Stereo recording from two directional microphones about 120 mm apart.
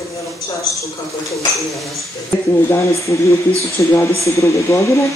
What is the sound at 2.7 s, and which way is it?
Speech, 25° left (ahead or behind).